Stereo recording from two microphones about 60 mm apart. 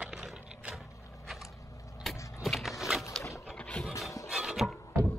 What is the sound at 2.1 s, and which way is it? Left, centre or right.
Vehicle, centre.